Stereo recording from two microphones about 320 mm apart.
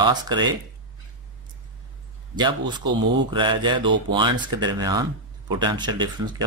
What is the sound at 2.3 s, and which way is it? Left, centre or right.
Speech, centre.